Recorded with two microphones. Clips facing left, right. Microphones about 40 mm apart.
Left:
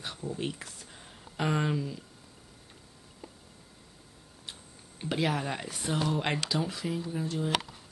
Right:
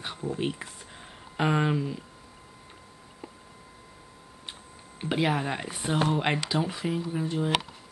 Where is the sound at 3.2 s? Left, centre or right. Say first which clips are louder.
Right 4 dB; right.